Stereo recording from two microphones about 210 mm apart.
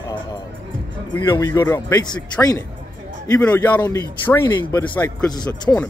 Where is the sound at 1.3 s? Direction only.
15° left (ahead or behind).